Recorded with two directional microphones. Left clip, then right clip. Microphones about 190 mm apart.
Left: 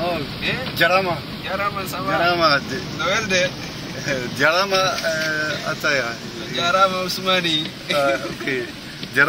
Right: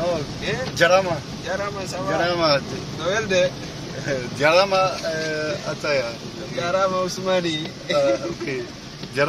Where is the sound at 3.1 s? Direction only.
45° right (ahead or behind).